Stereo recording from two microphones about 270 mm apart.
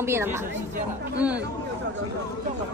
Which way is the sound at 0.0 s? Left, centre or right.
Centre.